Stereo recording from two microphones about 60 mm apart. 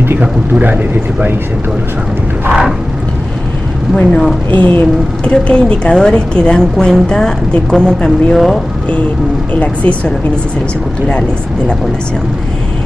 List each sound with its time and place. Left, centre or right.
0.2 s speech: right
3.9 s speech: centre
4.5 s speech: left; by 8.4 s centre
9.5 s speech: left